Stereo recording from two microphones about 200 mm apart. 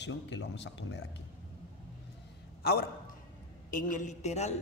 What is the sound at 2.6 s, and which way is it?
Speech, 50° left (ahead or behind).